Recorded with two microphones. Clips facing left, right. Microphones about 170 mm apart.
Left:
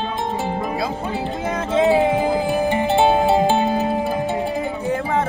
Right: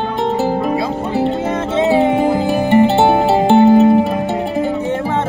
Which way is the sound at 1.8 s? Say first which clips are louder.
Right 3 dB; 25° right (ahead or behind).